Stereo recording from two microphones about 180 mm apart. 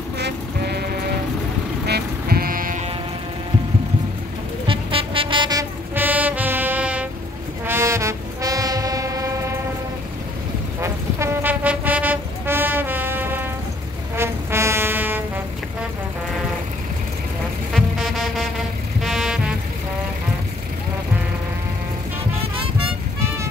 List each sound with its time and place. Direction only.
0.2 s music: 65° right (ahead or behind)
1.9 s music: 60° right (ahead or behind)
4.6 s music: 30° right (ahead or behind); by 7.1 s 5° right (ahead or behind)
7.6 s train: 15° right (ahead or behind)
10.8 s vehicle: 15° right (ahead or behind)
14.1 s music: 15° right (ahead or behind)
17.7 s music: centre (ahead or behind)